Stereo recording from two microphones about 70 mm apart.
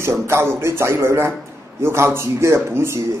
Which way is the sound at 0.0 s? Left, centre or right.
Right.